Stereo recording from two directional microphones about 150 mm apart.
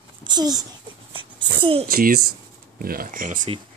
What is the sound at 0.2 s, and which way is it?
Speech, 30° right (ahead or behind).